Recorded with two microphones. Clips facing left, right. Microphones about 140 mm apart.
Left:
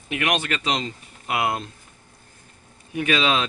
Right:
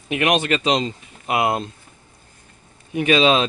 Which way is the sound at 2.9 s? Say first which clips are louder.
Right 6 dB; 25° right (ahead or behind).